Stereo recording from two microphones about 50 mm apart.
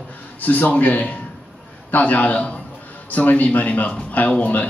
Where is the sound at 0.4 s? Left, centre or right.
Left.